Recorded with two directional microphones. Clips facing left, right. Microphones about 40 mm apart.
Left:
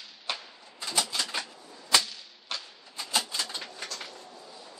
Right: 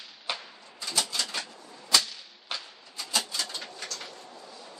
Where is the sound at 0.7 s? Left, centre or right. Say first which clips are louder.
Left 1 dB; centre.